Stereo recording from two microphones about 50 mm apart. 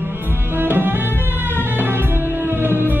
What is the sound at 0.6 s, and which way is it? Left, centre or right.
Music, right.